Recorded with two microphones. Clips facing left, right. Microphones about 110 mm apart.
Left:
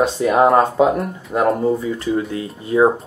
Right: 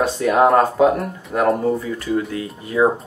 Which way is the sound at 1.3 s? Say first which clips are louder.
Left 1 dB; 15° left (ahead or behind).